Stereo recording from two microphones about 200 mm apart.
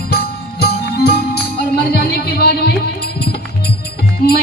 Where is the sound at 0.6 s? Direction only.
55° left (ahead or behind).